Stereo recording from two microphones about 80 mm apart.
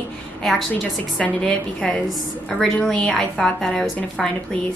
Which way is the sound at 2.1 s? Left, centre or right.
Centre.